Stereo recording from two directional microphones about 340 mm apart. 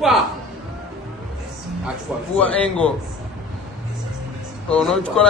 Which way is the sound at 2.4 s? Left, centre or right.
Centre.